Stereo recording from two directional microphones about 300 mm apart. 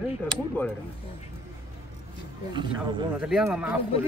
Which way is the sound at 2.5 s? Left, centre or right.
Centre.